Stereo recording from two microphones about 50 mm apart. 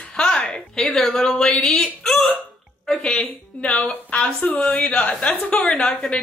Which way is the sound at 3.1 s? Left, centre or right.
Left.